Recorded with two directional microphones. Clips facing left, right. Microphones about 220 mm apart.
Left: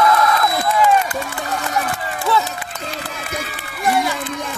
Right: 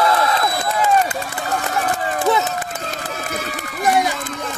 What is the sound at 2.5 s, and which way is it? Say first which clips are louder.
Run: right 2 dB; 45° right (ahead or behind).